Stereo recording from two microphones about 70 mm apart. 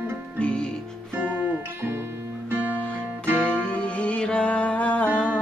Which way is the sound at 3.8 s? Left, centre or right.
Centre.